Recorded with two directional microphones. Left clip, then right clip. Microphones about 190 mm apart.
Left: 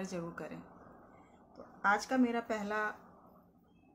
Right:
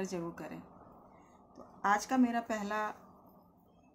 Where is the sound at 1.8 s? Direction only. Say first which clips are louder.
Right 1 dB; 10° right (ahead or behind).